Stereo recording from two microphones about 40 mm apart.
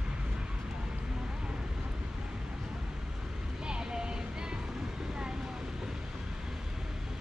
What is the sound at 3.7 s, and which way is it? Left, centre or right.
Vehicle, right.